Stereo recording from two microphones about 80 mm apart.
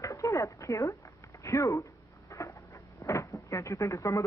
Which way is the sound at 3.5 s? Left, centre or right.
Left.